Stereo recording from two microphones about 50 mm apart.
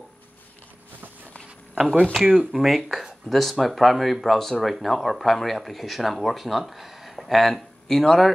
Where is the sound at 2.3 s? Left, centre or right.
Centre.